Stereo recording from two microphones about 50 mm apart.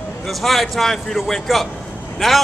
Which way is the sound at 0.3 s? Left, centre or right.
Centre.